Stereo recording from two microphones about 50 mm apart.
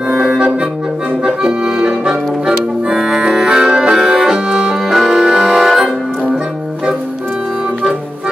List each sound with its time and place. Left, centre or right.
0.1 s music: centre
1.2 s accordion: centre